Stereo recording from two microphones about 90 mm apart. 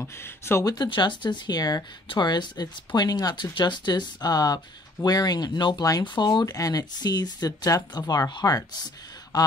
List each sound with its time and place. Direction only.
0.0 s speech: 30° left (ahead or behind)
0.8 s speech: 60° left (ahead or behind)
6.4 s speech: 40° left (ahead or behind)